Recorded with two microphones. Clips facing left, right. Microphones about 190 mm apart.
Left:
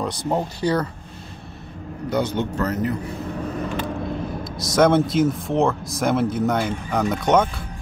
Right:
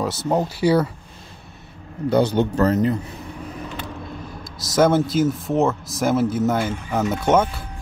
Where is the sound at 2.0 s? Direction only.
35° right (ahead or behind).